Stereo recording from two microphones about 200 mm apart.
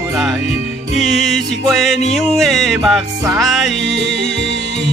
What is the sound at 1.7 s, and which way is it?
Music, centre (ahead or behind).